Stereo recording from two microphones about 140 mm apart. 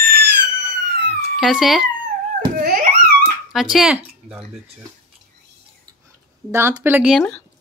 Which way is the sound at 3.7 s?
5° right (ahead or behind).